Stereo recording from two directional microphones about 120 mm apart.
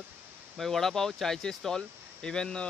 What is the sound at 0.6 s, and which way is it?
Speech, centre (ahead or behind).